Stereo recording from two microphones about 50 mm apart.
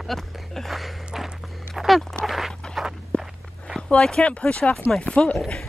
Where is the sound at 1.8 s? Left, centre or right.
Centre.